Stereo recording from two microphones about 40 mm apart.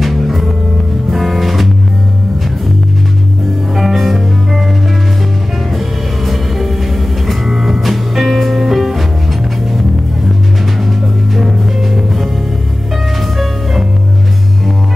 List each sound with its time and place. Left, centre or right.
0.0 s music: centre
3.7 s music: centre
6.2 s music: centre
11.3 s music: centre